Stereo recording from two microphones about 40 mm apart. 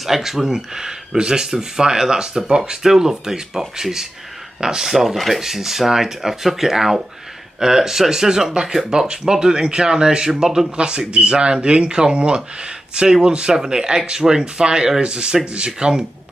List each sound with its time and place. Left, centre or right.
0.0 s speech: centre
10.8 s speech: right